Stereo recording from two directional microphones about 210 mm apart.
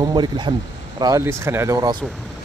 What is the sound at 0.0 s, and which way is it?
Speech, 20° right (ahead or behind).